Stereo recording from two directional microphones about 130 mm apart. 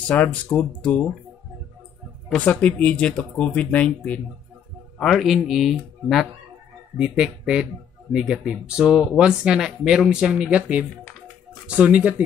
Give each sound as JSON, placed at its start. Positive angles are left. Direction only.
{"t": 0.0, "sound": "speech", "side_deg": 10}
{"t": 2.3, "sound": "speech", "side_deg": 10}